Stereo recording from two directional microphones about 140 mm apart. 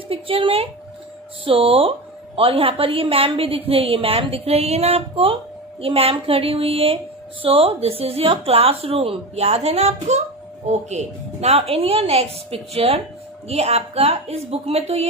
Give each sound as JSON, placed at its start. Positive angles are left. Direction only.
{"t": 0.1, "sound": "a woman's voice", "side_deg": -40}